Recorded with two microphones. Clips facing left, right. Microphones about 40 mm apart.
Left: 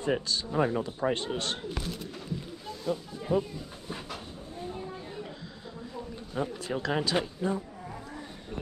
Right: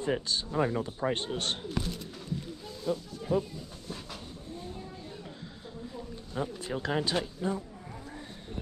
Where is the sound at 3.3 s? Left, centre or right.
Centre.